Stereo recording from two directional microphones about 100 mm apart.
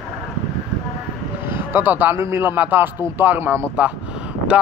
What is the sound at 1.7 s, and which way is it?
Speech, 20° right (ahead or behind).